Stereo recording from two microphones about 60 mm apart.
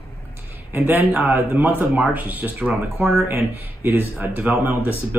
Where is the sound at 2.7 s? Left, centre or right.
Centre.